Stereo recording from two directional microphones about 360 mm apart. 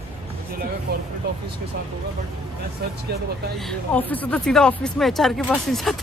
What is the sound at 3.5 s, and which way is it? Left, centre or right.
A woman's voice, centre.